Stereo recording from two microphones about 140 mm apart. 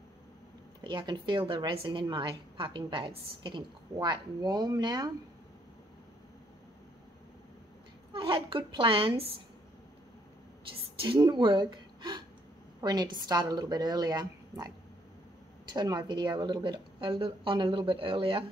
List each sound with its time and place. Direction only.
0.7 s a woman's voice: 35° right (ahead or behind)
8.1 s a woman's voice: 35° right (ahead or behind)
11.0 s a woman's voice: 35° right (ahead or behind)
15.7 s a woman's voice: 30° right (ahead or behind)